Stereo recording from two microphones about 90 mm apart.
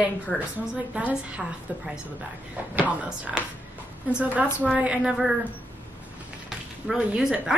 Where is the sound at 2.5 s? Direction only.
15° right (ahead or behind).